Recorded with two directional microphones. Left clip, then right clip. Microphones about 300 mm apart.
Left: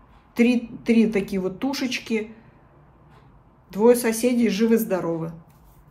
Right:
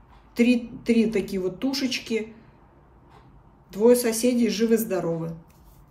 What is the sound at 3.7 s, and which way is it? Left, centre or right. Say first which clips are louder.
Speech: left 1 dB; centre.